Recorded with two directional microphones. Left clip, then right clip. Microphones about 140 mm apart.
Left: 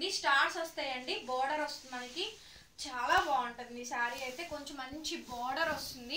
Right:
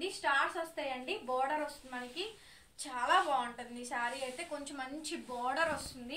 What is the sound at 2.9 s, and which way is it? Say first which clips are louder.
Speech: even; 15° right (ahead or behind).